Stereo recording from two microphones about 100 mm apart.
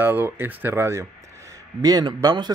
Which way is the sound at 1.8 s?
40° right (ahead or behind).